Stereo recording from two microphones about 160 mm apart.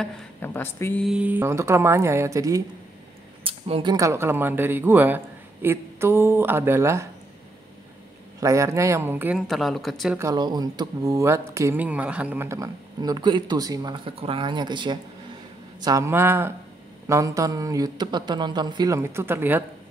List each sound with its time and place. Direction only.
0.0 s speech: 15° left (ahead or behind)
1.0 s a man's voice: 5° right (ahead or behind)
3.4 s a sound: 35° right (ahead or behind)
3.9 s a man's voice: 20° right (ahead or behind)
8.4 s a man's voice: 20° right (ahead or behind)
9.4 s speech: centre (ahead or behind)
10.1 s a man's voice: 20° right (ahead or behind)